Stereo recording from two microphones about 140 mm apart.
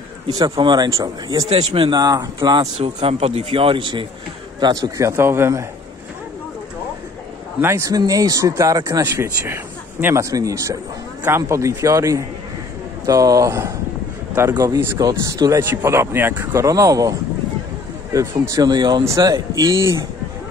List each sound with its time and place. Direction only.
0.6 s speech: 30° right (ahead or behind)
1.5 s speech: 45° right (ahead or behind)
2.8 s a man's voice: 45° right (ahead or behind); by 5.7 s 20° right (ahead or behind)
7.6 s speech: 20° right (ahead or behind)
18.1 s speech: 25° right (ahead or behind)